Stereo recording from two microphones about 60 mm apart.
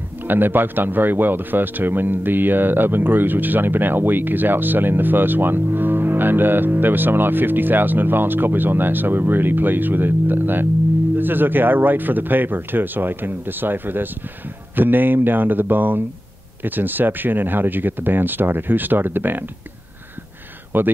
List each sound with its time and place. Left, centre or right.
0.2 s speech: right
20.7 s speech: right